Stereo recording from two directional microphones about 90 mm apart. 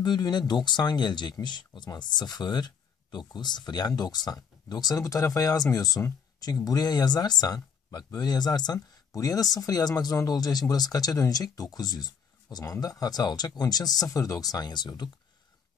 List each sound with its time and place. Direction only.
0.0 s speech: 55° left (ahead or behind)